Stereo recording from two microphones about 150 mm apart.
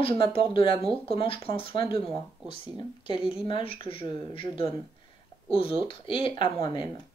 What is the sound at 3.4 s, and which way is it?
Speech, 35° left (ahead or behind).